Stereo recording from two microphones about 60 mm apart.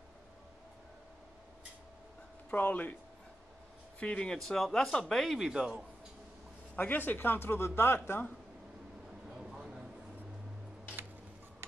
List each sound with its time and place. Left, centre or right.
2.5 s speech: left
4.0 s speech: centre
4.4 s speech: centre
5.5 s a man's voice: centre
6.7 s speech: left
9.3 s a sound: centre